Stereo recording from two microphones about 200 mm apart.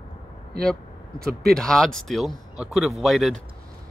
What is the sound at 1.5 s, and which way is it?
Speech, centre (ahead or behind).